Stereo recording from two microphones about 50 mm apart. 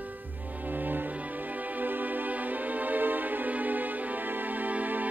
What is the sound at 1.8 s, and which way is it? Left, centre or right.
Music, right.